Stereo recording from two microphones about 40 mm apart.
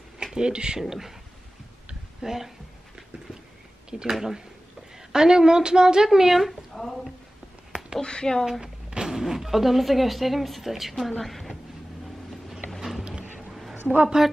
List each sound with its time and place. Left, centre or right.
0.2 s speech: right
0.7 s speech: centre
2.2 s speech: centre
4.0 s a woman's voice: centre
6.0 s speech: centre
8.0 s speech: left
8.5 s speech: centre
13.5 s a sound: centre
14.0 s speech: centre